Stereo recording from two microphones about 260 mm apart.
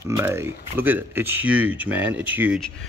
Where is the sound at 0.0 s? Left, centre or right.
Centre.